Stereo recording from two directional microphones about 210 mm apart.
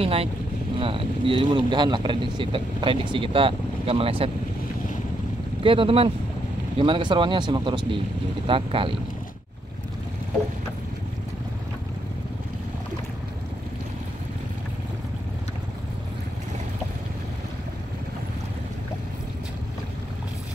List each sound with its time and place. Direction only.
0.0 s speech: 30° right (ahead or behind)
5.6 s speech: 25° right (ahead or behind)